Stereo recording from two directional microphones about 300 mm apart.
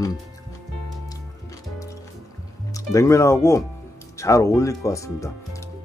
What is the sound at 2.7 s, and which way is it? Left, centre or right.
Speech, centre.